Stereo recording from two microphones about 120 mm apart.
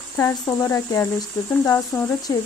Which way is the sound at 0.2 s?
25° left (ahead or behind).